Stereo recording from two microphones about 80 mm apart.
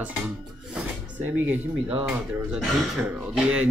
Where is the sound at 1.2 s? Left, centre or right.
Right.